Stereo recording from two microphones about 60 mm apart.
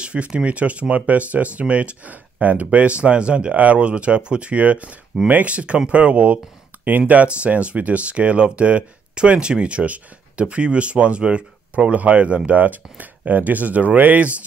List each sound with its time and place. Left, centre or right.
0.0 s speech: centre